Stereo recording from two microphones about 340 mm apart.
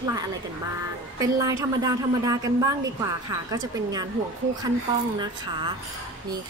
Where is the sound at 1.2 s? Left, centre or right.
Centre.